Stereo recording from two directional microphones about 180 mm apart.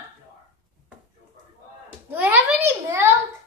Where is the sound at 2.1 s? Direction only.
10° right (ahead or behind).